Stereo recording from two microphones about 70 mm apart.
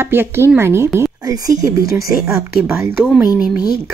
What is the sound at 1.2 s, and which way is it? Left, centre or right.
Speech, right.